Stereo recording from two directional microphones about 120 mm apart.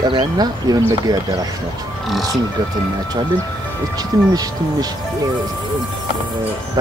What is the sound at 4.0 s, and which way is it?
Speech, 35° right (ahead or behind).